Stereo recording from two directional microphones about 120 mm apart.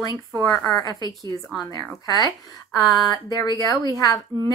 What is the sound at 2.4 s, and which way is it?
A woman's voice, 35° left (ahead or behind).